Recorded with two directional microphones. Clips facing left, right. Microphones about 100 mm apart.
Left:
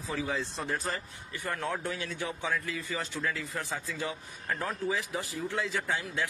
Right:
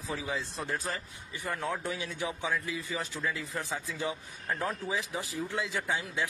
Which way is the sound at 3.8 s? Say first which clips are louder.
Right 1 dB; 20° right (ahead or behind).